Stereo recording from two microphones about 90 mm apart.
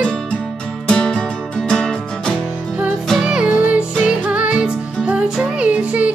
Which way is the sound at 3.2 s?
15° right (ahead or behind).